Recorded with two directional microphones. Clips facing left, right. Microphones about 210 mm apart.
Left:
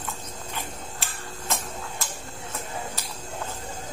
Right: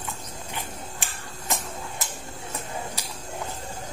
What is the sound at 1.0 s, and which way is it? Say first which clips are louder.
Tick-tock: left 1 dB; 15° right (ahead or behind).